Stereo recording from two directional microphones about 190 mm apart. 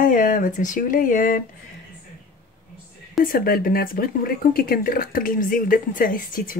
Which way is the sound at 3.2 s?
50° left (ahead or behind).